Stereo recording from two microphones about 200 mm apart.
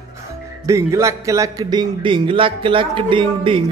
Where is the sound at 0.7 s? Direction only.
15° right (ahead or behind).